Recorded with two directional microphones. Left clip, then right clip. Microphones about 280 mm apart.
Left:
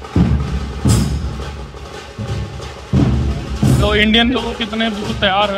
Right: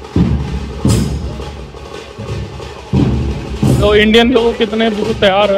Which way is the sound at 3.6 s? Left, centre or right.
Centre.